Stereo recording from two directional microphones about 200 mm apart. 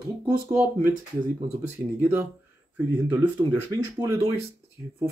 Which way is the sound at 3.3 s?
15° right (ahead or behind).